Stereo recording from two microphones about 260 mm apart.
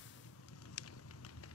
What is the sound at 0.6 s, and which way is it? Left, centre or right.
Fire, left.